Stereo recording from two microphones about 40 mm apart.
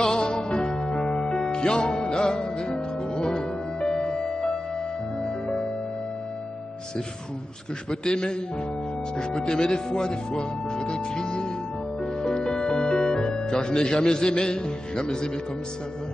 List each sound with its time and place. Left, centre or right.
0.0 s music: centre
7.9 s a man's voice: centre
12.0 s music: left